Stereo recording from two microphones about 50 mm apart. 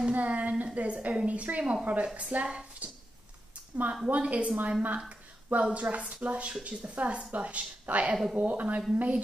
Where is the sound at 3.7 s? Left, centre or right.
Right.